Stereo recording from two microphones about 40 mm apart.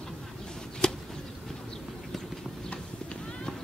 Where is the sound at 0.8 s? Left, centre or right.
Centre.